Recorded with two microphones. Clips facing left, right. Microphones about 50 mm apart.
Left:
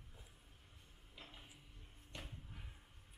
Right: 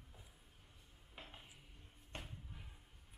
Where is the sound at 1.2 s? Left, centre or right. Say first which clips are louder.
Right 2 dB; right.